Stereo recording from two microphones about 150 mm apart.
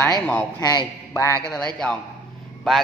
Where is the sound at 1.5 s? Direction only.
5° left (ahead or behind).